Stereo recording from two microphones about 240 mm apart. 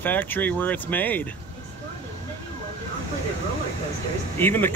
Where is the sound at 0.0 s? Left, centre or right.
Centre.